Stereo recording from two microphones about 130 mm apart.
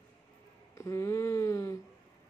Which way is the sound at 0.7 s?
20° left (ahead or behind).